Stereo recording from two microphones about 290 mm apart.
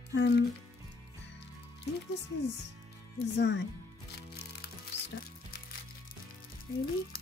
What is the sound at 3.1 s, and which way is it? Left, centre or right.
Speech, left.